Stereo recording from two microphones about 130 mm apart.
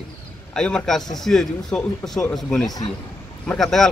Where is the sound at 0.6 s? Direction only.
5° left (ahead or behind).